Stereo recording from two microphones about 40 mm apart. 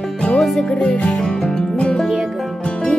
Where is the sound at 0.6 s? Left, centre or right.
Left.